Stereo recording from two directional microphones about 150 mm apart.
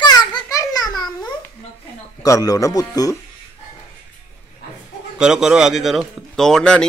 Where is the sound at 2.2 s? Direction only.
25° left (ahead or behind).